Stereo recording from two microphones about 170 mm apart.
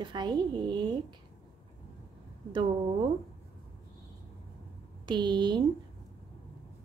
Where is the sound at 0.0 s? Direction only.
25° right (ahead or behind).